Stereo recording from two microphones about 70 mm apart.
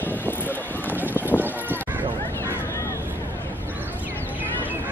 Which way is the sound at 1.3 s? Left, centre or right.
Left.